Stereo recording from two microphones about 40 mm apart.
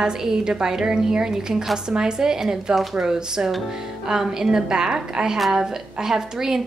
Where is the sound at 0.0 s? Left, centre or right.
Centre.